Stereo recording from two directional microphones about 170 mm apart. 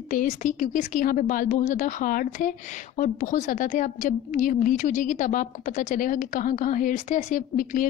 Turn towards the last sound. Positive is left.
turn(degrees=50)  # may be behind; listen again after turning